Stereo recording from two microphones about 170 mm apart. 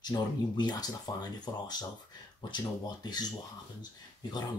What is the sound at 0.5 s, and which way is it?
Speech, 25° left (ahead or behind).